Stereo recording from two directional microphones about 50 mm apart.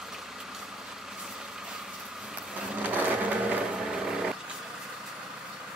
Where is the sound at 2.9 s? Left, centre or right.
Right.